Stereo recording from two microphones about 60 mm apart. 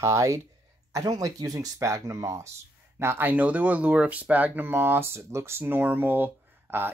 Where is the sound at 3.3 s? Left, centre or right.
Right.